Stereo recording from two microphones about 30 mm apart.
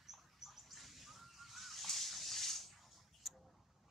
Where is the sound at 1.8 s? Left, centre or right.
Centre.